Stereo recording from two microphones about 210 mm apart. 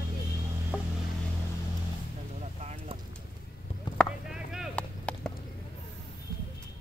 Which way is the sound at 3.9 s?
Centre (ahead or behind).